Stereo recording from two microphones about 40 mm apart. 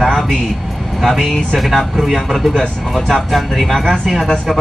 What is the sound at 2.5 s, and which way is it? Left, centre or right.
Speech, centre.